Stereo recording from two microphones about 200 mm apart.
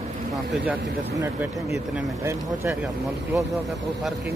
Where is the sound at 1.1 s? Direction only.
15° right (ahead or behind).